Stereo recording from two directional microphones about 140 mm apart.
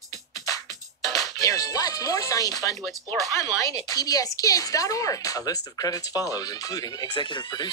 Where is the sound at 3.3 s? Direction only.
20° left (ahead or behind).